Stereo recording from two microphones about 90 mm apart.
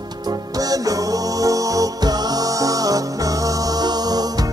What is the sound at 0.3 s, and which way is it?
Music, 45° right (ahead or behind).